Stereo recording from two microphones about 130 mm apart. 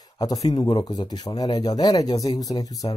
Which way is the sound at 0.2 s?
30° left (ahead or behind).